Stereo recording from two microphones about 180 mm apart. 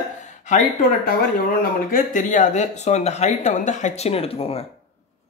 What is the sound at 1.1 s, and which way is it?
Speech, 50° left (ahead or behind).